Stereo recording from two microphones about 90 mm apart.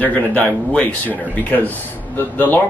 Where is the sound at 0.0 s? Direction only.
20° left (ahead or behind).